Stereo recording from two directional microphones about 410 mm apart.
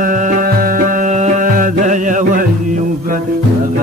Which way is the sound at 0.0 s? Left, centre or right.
Centre.